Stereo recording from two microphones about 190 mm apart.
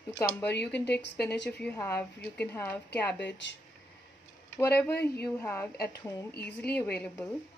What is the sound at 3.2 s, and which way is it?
Speech, 65° left (ahead or behind).